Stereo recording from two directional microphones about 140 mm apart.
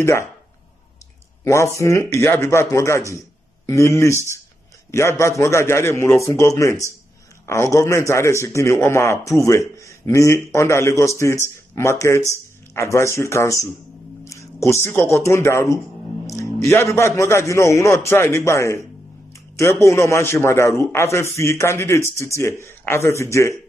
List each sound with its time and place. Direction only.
0.0 s a man's voice: 20° left (ahead or behind)
1.4 s a man's voice: 20° left (ahead or behind)